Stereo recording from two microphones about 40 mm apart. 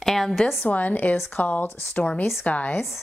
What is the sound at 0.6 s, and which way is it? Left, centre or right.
A woman's voice, left.